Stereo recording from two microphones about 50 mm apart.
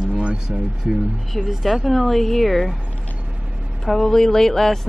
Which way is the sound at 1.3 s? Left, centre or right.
Centre.